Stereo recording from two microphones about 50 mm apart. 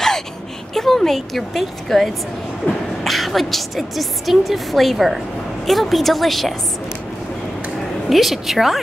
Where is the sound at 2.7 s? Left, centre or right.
Left.